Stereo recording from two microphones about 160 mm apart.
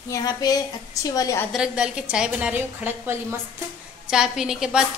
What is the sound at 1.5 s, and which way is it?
A woman's voice, 5° right (ahead or behind).